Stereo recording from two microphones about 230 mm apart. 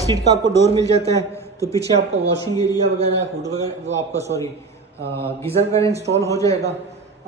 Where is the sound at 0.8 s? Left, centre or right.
Right.